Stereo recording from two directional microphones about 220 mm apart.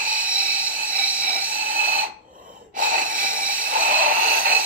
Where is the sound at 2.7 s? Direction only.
35° right (ahead or behind).